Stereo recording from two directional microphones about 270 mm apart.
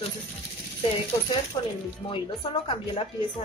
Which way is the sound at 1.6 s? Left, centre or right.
Centre.